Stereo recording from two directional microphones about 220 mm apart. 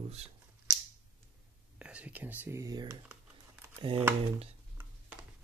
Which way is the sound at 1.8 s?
5° right (ahead or behind).